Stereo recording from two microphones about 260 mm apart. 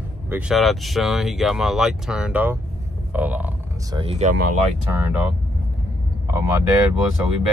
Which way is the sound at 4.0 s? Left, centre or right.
Right.